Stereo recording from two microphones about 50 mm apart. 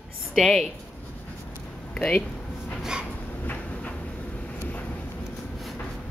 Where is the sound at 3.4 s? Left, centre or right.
Left.